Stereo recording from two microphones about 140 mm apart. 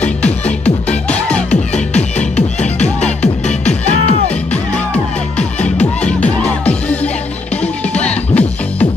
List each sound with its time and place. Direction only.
0.0 s music: 10° left (ahead or behind)
1.5 s music: 55° left (ahead or behind)
4.5 s music: 10° left (ahead or behind)